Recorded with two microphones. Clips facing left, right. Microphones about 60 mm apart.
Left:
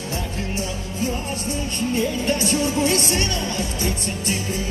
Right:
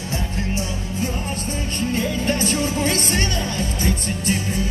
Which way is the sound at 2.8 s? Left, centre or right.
Right.